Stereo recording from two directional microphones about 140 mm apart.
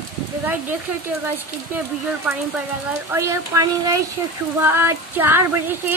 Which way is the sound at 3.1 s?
20° right (ahead or behind).